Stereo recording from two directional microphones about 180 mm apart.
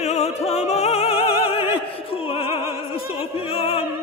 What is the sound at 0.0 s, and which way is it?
Opera, 40° left (ahead or behind).